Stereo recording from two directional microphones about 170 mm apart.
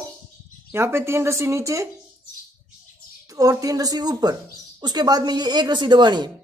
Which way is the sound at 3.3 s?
20° right (ahead or behind).